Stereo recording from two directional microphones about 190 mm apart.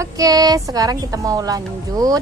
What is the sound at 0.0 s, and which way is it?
A woman's voice, 20° right (ahead or behind).